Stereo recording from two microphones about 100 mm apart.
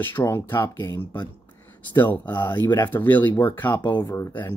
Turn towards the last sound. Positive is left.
turn(degrees=25)  # may be behind; listen again after turning